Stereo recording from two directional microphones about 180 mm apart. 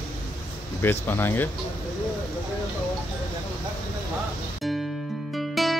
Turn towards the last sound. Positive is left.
turn(degrees=0)  # may be behind; listen again after turning